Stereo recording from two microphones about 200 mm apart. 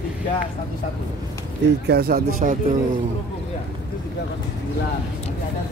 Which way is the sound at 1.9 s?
45° right (ahead or behind).